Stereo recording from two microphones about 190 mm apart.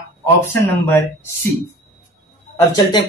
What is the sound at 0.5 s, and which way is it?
Speech, 10° left (ahead or behind).